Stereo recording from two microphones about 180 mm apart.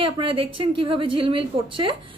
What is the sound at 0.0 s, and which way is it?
A woman's voice, 30° right (ahead or behind).